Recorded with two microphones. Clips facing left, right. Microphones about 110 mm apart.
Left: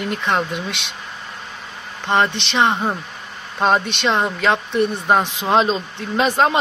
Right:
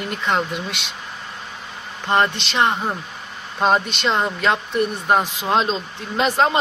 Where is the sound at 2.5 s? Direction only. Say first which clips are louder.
Left 2 dB; 20° left (ahead or behind).